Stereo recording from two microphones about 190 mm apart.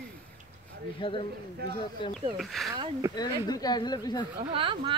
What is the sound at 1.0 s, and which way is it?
Speech, 30° left (ahead or behind).